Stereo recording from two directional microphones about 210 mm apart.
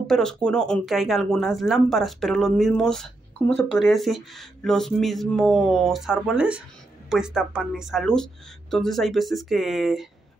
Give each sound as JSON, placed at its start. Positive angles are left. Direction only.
{"t": 0.0, "sound": "speech", "side_deg": 0}